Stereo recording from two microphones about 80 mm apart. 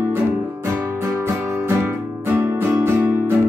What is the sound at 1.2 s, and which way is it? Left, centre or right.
Music, right.